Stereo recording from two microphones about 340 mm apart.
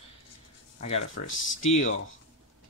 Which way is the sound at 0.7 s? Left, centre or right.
Centre.